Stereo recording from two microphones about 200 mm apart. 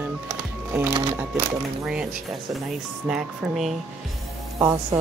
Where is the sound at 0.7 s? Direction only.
15° right (ahead or behind).